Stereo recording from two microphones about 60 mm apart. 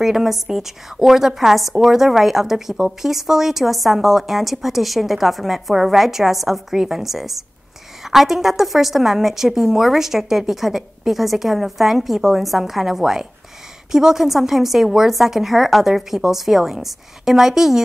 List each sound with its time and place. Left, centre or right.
0.0 s a woman's voice: centre